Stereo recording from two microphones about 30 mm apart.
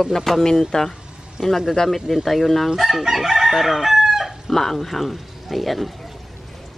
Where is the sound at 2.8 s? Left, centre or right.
Centre.